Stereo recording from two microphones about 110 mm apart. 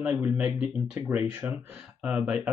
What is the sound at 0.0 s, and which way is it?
Speech, 10° right (ahead or behind).